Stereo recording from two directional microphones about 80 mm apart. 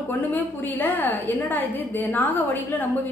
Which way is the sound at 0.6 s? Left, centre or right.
Left.